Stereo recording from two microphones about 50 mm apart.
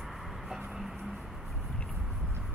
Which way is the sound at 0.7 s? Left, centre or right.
Centre.